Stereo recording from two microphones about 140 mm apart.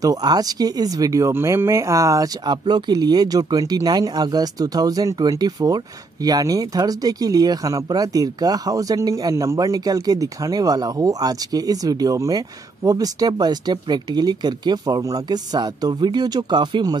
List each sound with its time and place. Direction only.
0.0 s speech: 25° right (ahead or behind)